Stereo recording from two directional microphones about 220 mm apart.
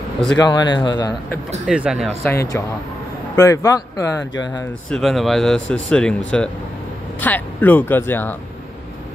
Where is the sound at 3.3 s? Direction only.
15° left (ahead or behind).